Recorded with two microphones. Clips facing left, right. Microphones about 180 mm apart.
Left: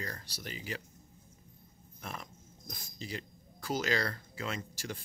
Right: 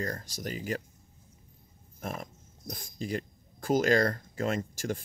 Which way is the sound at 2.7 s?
50° right (ahead or behind).